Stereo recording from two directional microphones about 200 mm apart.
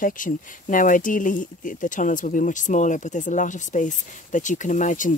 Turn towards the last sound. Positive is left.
turn(degrees=40)  # may be behind; listen again after turning